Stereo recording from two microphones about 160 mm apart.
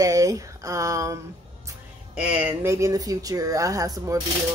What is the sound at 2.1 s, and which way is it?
Speech, 10° right (ahead or behind).